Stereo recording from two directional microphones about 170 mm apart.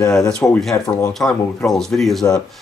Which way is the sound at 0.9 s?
20° left (ahead or behind).